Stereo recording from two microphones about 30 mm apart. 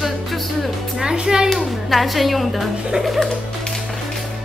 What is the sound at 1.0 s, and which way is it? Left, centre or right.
Speech, right.